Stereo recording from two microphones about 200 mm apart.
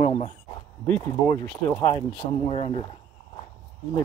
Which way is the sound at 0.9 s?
5° left (ahead or behind).